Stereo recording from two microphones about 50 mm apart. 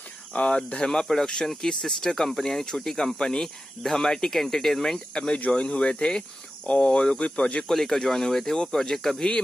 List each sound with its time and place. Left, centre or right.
0.3 s speech: left
7.6 s speech: centre